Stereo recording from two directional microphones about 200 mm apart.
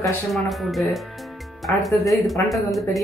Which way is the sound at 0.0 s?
Centre (ahead or behind).